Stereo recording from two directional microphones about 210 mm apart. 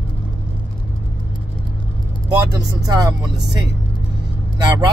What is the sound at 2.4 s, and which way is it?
Speech, 20° right (ahead or behind).